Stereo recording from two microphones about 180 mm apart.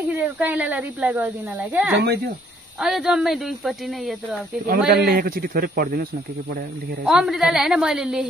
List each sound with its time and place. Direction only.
0.1 s a woman's voice: 10° right (ahead or behind)
4.6 s a man's voice: 60° right (ahead or behind)
7.1 s speech: centre (ahead or behind)